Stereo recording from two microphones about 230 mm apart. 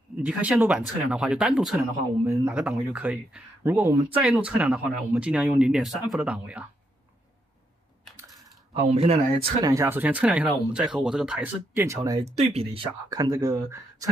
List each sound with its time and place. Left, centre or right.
0.2 s speech: centre
8.8 s speech: right
12.3 s speech: right